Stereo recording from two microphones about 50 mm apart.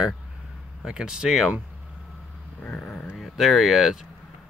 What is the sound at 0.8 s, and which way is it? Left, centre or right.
Speech, centre.